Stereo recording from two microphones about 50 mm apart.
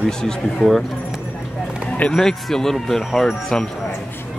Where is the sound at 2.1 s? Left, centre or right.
Centre.